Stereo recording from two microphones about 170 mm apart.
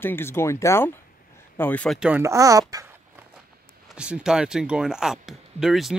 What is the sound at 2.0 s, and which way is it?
Speech, 10° right (ahead or behind).